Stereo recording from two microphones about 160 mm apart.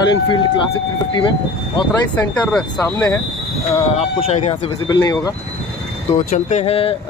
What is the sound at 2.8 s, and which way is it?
Speech, 15° left (ahead or behind).